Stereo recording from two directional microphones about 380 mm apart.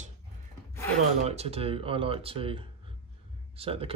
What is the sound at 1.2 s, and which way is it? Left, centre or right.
Speech, centre.